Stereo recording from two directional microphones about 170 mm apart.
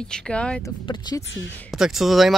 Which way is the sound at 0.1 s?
5° left (ahead or behind).